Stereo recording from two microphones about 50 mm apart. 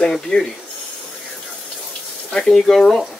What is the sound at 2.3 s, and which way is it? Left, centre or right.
Speech, centre.